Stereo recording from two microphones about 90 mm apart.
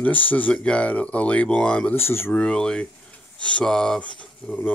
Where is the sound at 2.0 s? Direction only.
25° left (ahead or behind).